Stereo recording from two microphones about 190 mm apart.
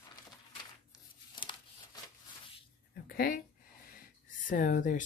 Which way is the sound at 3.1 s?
50° left (ahead or behind).